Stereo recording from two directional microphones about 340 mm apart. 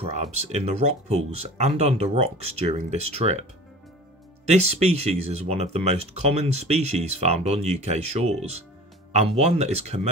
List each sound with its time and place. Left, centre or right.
0.0 s speech: centre
4.5 s speech: centre